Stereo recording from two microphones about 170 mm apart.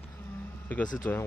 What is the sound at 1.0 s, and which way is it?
Speech, 10° left (ahead or behind).